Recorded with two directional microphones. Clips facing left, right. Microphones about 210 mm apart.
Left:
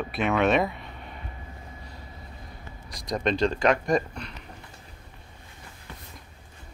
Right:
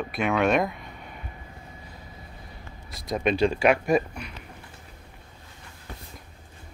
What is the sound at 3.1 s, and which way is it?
Speech, 5° right (ahead or behind).